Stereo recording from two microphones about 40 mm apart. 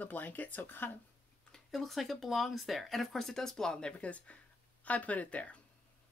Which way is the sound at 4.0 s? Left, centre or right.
Left.